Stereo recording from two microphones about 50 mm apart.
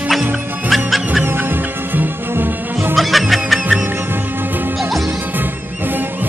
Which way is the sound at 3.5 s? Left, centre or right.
Right.